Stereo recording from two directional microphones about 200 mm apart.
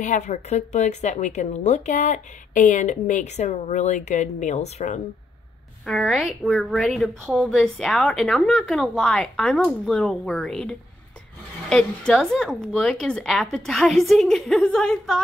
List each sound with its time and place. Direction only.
0.0 s a woman's voice: 40° left (ahead or behind)
5.9 s a woman's voice: centre (ahead or behind)